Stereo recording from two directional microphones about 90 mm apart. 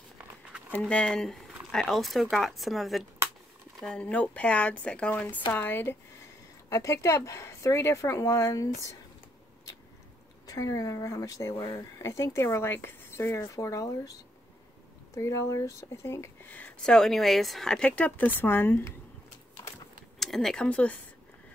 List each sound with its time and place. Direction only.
0.7 s speech: 10° left (ahead or behind)
3.8 s speech: 10° left (ahead or behind)
5.5 s speech: 25° left (ahead or behind)
6.7 s speech: 35° left (ahead or behind)
10.4 s speech: 40° left (ahead or behind)
15.1 s speech: 35° left (ahead or behind)
16.8 s speech: 5° left (ahead or behind); by 18.9 s 20° left (ahead or behind)
20.2 s speech: 5° left (ahead or behind)